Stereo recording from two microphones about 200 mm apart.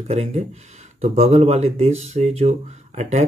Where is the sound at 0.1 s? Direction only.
35° right (ahead or behind).